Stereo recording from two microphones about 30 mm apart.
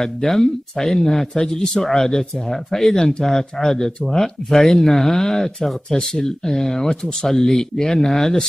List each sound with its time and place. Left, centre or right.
0.0 s speech: centre
3.0 s speech: left
3.3 s speech: centre